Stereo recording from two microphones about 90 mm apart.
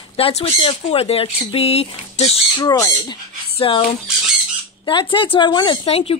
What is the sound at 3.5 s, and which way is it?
Speech, 70° left (ahead or behind).